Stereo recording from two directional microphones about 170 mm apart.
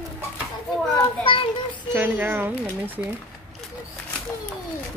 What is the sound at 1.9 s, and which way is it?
Speech, 10° right (ahead or behind).